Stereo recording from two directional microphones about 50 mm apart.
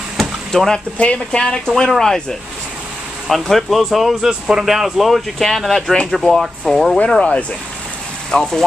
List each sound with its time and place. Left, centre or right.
0.2 s a sound: centre
0.7 s speech: left
1.8 s speech: centre
3.3 s speech: centre
7.1 s speech: centre